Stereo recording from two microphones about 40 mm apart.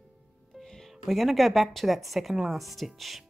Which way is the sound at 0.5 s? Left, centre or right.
Centre.